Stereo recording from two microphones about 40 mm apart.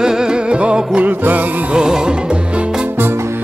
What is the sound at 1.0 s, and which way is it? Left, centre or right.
Music, right.